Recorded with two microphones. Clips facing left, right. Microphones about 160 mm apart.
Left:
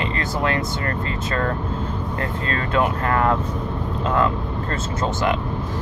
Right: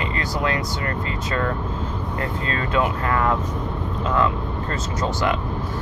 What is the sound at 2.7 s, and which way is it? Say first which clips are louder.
Speech: left 2 dB; 35° left (ahead or behind).